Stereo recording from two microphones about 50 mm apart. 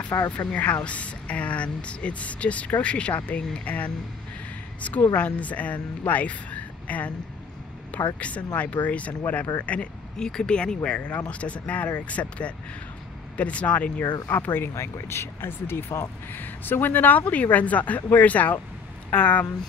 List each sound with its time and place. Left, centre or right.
0.1 s speech: left
0.6 s speech: left
5.1 s speech: left
9.7 s speech: centre
14.2 s speech: left
14.8 s speech: left
16.3 s speech: left